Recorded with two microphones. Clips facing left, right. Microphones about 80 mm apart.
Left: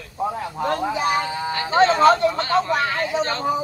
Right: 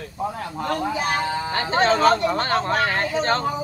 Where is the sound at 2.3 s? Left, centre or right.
Right.